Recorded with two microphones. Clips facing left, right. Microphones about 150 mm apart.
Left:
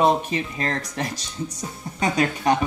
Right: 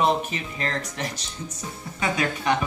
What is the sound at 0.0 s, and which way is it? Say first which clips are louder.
Speech: left 3 dB; 35° left (ahead or behind).